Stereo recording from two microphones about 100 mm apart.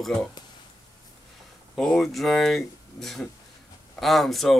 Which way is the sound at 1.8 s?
5° left (ahead or behind).